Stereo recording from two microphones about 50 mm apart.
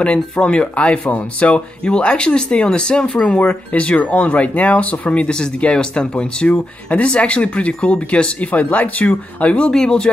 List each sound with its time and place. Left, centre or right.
0.0 s speech: left
9.7 s speech: centre